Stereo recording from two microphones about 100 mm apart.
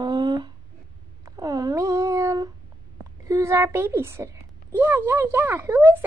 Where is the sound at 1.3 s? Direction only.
35° right (ahead or behind).